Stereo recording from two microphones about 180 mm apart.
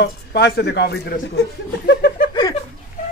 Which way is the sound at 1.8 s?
70° left (ahead or behind).